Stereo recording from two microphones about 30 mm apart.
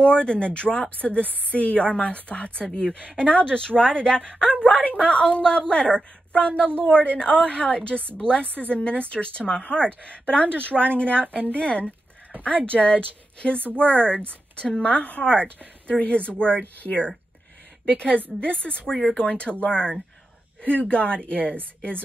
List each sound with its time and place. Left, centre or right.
0.0 s a woman's voice: left
2.5 s a woman's voice: left
4.6 s a woman's voice: left
7.9 s a woman's voice: left
18.4 s a woman's voice: left